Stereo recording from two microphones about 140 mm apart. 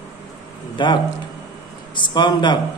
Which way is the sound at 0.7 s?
30° left (ahead or behind).